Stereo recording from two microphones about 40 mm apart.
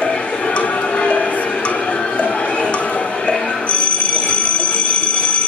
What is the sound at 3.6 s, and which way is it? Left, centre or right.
Telephone bell ringing, left.